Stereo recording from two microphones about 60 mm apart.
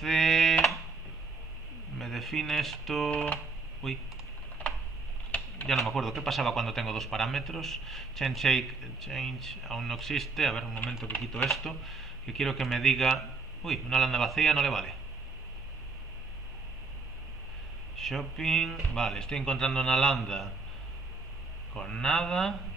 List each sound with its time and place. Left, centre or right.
0.0 s a sound: centre
2.0 s a man's voice: centre
5.3 s a sound: centre
5.7 s a man's voice: centre
17.9 s speech: centre
21.7 s speech: centre